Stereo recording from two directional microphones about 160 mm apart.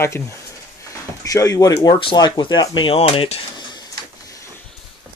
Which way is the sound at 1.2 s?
20° left (ahead or behind).